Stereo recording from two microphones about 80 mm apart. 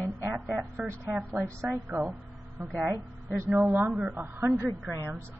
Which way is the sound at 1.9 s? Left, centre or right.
Right.